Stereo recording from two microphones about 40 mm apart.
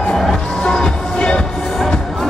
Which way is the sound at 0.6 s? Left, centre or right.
Left.